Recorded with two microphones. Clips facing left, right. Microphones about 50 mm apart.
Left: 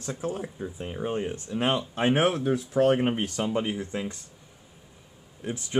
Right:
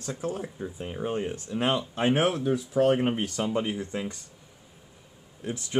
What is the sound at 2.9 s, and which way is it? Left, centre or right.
Speech, centre.